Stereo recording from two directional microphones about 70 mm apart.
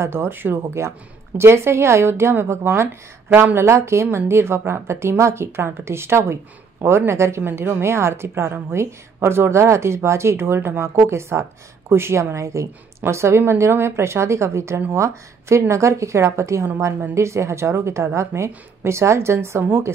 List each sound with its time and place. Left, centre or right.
0.0 s a woman's voice: right